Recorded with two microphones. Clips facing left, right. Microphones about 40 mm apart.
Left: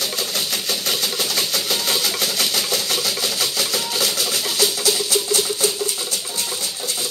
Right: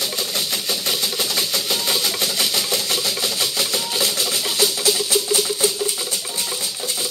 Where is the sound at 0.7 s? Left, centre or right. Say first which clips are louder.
Even; centre.